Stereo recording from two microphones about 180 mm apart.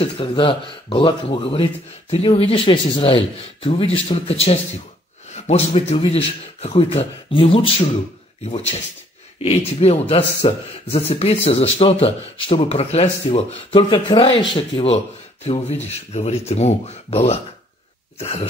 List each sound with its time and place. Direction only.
0.0 s speech: 30° left (ahead or behind)